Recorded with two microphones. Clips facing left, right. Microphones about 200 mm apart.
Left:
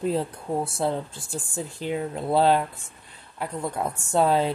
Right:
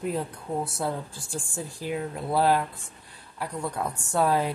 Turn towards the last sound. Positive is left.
turn(degrees=25)  # may be behind; listen again after turning